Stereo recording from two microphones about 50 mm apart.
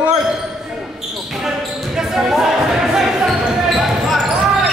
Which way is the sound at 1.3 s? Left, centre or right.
Centre.